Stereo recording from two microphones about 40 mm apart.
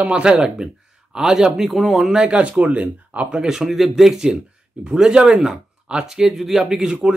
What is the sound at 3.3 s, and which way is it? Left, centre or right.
Speech, centre.